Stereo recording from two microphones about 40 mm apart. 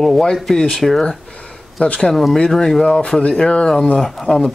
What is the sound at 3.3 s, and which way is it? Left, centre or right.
Speech, left.